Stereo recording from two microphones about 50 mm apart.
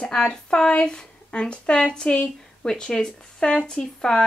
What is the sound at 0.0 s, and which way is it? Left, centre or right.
A woman's voice, centre.